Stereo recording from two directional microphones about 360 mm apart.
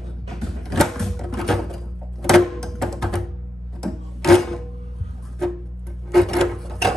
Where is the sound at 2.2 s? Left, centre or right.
Centre.